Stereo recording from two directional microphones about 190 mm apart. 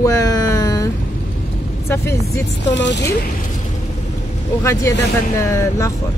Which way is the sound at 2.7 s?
70° left (ahead or behind).